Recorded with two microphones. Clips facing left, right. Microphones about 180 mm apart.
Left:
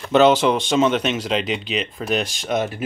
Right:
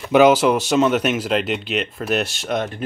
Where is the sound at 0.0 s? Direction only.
10° right (ahead or behind).